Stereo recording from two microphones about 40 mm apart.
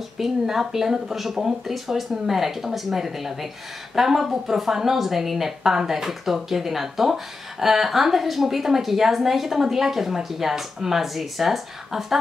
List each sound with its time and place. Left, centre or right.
0.2 s a woman's voice: centre